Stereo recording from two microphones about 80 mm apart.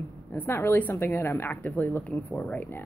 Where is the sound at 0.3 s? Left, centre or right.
Left.